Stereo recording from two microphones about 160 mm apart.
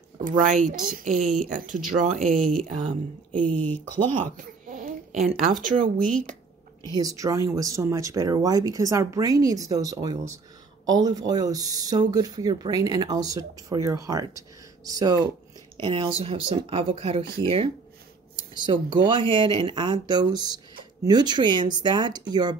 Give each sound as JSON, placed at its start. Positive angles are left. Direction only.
{"t": 0.2, "sound": "speech", "side_deg": -55}
{"t": 3.4, "sound": "speech", "side_deg": 10}
{"t": 3.9, "sound": "speech", "side_deg": -55}
{"t": 6.9, "sound": "speech", "side_deg": -20}
{"t": 15.8, "sound": "speech", "side_deg": -35}